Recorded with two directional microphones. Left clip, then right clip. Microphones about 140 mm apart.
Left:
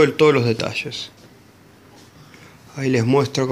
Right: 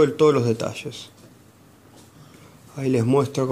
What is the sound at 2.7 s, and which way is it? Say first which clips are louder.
Speech: left 2 dB; 10° right (ahead or behind).